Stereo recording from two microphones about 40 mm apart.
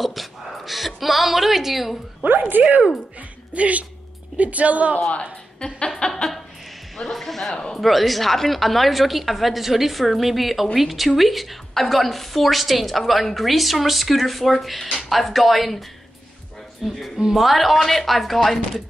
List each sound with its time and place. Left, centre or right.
0.0 s speech: centre
2.5 s speech: right
3.2 s a woman's voice: right
5.6 s a man's voice: centre
5.9 s a sound: left
7.0 s a woman's voice: centre
7.5 s a man's voice: centre
7.8 s a woman's voice: centre
16.8 s a woman's voice: centre